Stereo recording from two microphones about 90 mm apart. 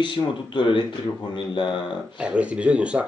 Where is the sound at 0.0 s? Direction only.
65° left (ahead or behind).